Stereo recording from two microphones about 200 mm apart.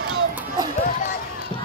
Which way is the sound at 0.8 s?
40° left (ahead or behind).